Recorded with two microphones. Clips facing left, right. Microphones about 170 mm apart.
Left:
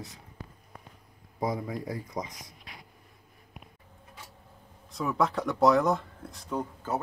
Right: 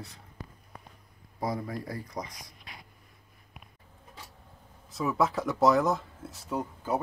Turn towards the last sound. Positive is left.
turn(degrees=-10)  # may be behind; listen again after turning